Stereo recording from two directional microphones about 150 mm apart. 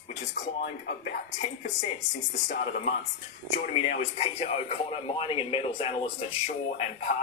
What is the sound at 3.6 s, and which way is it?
Speech, 50° left (ahead or behind).